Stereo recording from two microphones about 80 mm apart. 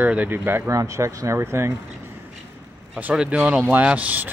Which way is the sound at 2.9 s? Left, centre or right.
Centre.